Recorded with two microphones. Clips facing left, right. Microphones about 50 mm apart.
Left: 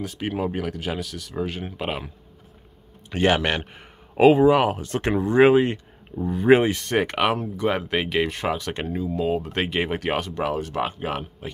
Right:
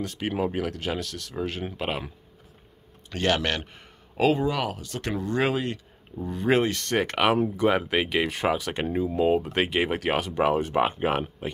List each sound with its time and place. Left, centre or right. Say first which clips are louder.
0.0 s speech: left 1 dB; centre
3.1 s speech: left 4 dB; centre
6.2 s speech: left 6 dB; centre
8.9 s speech: right 2 dB; centre
10.3 s speech: right 3 dB; centre